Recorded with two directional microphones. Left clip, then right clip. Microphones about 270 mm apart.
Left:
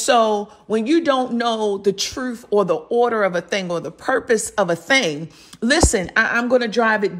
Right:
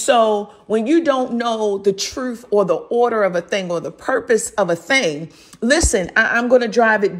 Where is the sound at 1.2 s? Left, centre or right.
Left.